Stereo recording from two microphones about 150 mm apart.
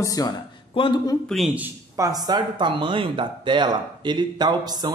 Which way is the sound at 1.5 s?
15° right (ahead or behind).